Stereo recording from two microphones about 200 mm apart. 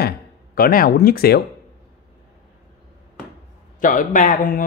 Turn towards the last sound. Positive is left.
turn(degrees=40)  # may be behind; listen again after turning